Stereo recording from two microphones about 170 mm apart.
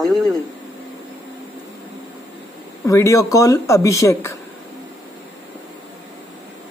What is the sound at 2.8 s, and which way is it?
Speech, 20° left (ahead or behind).